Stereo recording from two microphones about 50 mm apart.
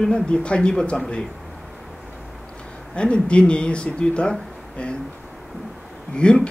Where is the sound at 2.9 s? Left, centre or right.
Left.